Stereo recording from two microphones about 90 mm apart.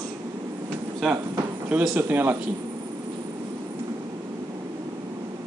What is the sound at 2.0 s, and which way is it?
Speech, 20° right (ahead or behind).